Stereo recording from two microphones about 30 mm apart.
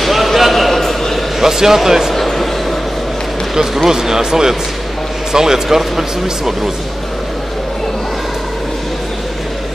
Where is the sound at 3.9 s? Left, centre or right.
Centre.